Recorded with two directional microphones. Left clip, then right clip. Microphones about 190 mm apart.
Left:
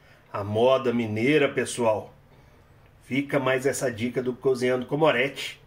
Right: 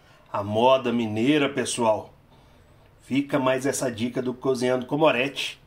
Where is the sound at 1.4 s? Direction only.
35° right (ahead or behind).